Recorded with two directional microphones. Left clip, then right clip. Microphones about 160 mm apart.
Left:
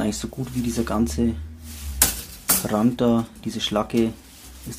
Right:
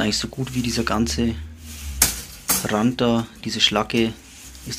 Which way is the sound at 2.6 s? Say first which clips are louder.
Right 1 dB; 20° left (ahead or behind).